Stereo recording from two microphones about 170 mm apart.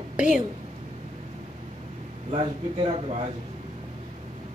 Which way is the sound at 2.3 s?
35° right (ahead or behind).